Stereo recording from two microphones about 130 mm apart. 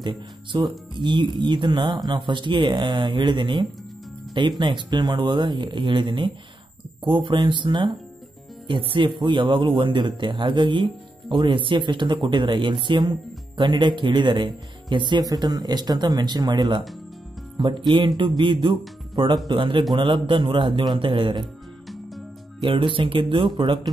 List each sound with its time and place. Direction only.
0.0 s speech: 40° right (ahead or behind)
21.8 s music: centre (ahead or behind)
22.6 s speech: 40° right (ahead or behind)